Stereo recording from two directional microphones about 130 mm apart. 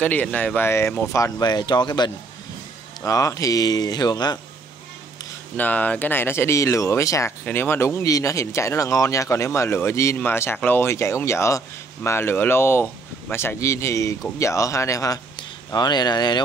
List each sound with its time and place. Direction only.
0.0 s speech: 10° left (ahead or behind); by 4.4 s 30° left (ahead or behind)
5.6 s speech: 10° left (ahead or behind); by 16.3 s 35° left (ahead or behind)